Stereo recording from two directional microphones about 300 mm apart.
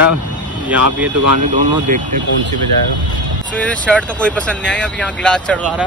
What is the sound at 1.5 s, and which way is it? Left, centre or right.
Speech, right.